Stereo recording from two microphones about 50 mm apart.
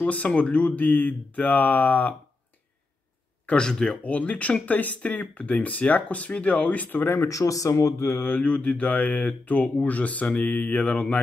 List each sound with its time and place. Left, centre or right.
0.0 s speech: left
3.5 s speech: centre
4.0 s speech: left
7.2 s speech: left
8.1 s speech: left